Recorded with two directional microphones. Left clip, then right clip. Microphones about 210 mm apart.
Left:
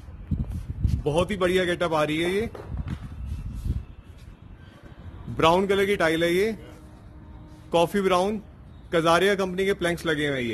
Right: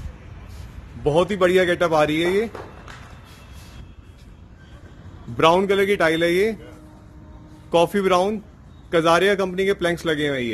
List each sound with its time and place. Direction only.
1.0 s a man's voice: 5° right (ahead or behind)
5.4 s a man's voice: centre (ahead or behind)
7.7 s a man's voice: centre (ahead or behind)